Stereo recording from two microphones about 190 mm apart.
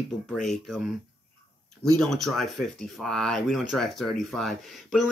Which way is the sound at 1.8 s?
Centre (ahead or behind).